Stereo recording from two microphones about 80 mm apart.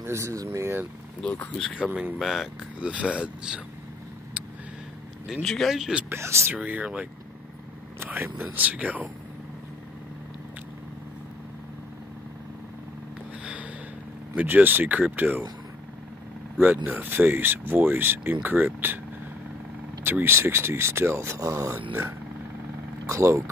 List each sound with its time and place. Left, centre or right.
0.0 s speech: right
1.2 s speech: centre
2.1 s speech: centre
2.9 s speech: centre
5.3 s speech: centre
6.0 s speech: right
6.5 s speech: centre
8.0 s speech: right
8.5 s speech: centre
14.3 s speech: right
16.8 s speech: right
20.0 s speech: right
23.0 s speech: right